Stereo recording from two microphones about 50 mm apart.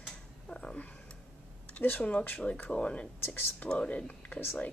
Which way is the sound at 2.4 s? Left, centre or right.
Left.